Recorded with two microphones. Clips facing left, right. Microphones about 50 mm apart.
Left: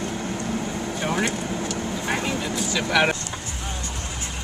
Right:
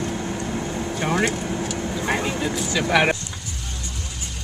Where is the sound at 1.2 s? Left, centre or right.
Centre.